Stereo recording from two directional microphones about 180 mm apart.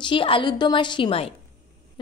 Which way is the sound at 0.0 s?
30° left (ahead or behind).